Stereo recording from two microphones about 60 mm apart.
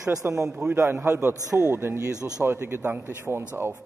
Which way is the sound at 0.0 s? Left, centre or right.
Right.